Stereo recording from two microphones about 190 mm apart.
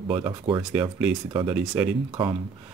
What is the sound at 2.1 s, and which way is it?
Speech, 25° right (ahead or behind).